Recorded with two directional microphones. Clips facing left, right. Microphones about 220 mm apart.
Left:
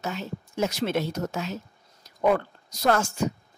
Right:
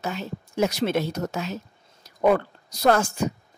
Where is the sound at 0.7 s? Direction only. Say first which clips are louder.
Right 2 dB; 15° right (ahead or behind).